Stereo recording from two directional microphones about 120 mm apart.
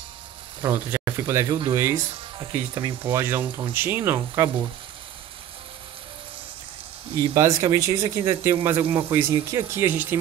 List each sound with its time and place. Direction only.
0.7 s speech: 20° right (ahead or behind)
2.7 s speech: 40° right (ahead or behind)
3.1 s speech: 20° right (ahead or behind)
7.3 s speech: 25° right (ahead or behind)